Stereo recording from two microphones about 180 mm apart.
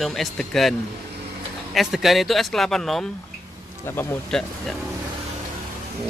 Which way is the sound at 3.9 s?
10° left (ahead or behind).